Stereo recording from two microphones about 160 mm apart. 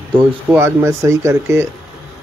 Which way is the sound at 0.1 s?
15° right (ahead or behind).